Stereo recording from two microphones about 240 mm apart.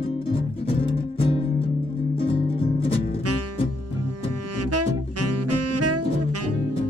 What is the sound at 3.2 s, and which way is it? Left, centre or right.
Music, right.